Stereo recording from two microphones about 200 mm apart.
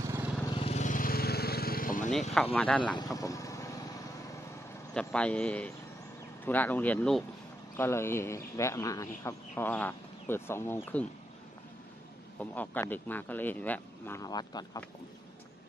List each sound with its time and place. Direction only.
0.0 s vehicle: 15° right (ahead or behind)
0.6 s vehicle: 35° left (ahead or behind)
2.5 s speech: 5° left (ahead or behind)
3.0 s speech: 15° left (ahead or behind)
4.9 s speech: 5° left (ahead or behind)
12.4 s speech: 10° left (ahead or behind)